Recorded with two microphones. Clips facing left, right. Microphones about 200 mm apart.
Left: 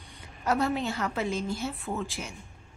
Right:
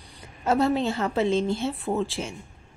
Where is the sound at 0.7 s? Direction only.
30° right (ahead or behind).